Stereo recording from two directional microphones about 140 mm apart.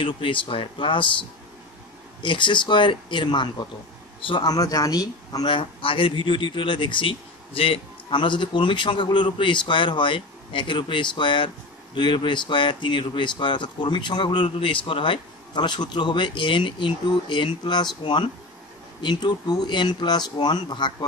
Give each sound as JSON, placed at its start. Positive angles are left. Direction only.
{"t": 0.0, "sound": "a man's voice", "side_deg": 40}
{"t": 2.2, "sound": "a man's voice", "side_deg": 35}